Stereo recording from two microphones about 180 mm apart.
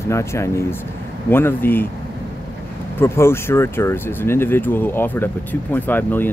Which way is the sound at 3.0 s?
15° left (ahead or behind).